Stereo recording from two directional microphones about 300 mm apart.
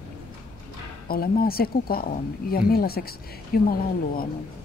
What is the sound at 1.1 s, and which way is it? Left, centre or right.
Speech, left.